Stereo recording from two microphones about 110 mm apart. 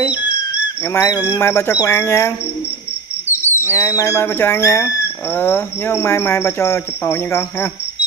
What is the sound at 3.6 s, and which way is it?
Cricket, 25° left (ahead or behind).